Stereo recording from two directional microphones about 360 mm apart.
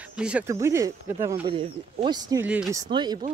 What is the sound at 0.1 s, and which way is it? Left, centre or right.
Speech, centre.